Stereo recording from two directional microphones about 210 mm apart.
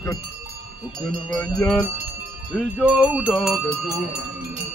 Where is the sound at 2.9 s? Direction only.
5° right (ahead or behind).